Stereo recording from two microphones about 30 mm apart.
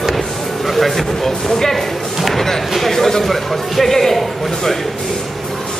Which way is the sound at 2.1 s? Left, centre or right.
Centre.